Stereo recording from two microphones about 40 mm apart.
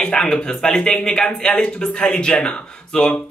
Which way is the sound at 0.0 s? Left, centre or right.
Left.